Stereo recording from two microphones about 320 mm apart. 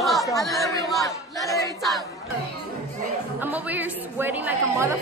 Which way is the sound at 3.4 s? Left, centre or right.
Centre.